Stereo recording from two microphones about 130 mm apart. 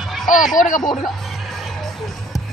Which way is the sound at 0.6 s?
80° left.